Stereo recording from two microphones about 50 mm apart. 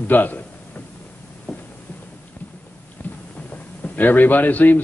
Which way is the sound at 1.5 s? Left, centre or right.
Left.